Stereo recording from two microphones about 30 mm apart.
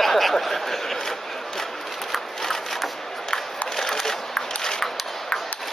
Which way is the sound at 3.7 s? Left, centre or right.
Centre.